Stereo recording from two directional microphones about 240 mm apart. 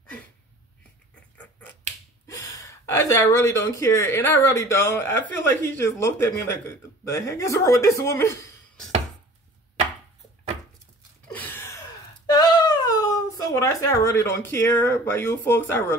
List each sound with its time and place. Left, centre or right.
2.2 s speech: centre
11.3 s a sound: centre
12.3 s speech: centre